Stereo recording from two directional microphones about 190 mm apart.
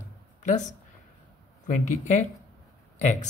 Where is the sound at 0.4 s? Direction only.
40° left (ahead or behind).